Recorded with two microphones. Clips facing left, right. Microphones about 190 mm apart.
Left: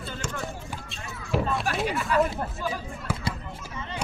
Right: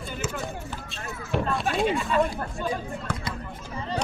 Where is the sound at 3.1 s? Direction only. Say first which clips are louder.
Left 3 dB; 5° left (ahead or behind).